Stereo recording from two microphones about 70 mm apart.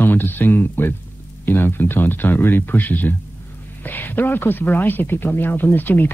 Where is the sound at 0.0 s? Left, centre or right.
Left.